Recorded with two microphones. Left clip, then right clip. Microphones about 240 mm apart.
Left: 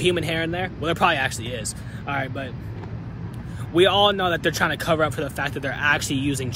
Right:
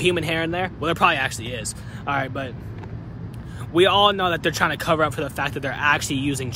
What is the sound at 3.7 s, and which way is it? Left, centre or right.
Speech, centre.